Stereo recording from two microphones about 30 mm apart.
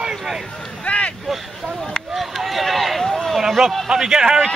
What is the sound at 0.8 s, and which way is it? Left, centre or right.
Vehicle, left.